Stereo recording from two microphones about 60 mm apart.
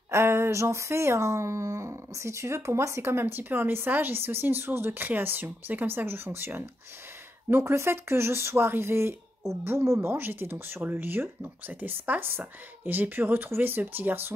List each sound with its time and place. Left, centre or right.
0.1 s speech: right